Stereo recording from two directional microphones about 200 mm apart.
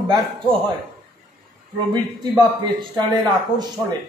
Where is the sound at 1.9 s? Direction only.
20° right (ahead or behind).